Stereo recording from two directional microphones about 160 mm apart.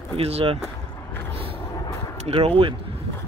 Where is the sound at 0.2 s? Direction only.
40° right (ahead or behind).